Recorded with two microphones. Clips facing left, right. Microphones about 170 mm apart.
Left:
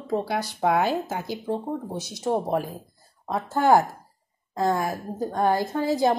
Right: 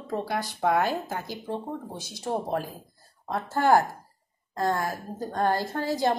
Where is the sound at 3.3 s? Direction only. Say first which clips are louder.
Left 2 dB; 15° left (ahead or behind).